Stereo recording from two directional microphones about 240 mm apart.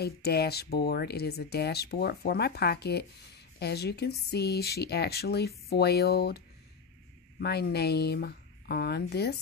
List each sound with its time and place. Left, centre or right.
0.0 s speech: left